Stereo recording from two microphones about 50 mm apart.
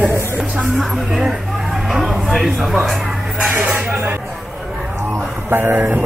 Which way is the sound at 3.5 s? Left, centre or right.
Right.